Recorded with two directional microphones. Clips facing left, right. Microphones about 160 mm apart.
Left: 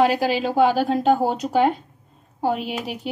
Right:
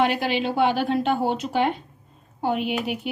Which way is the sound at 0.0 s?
40° left (ahead or behind).